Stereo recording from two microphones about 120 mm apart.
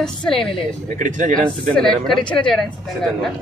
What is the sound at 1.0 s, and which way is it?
Speech, 90° right.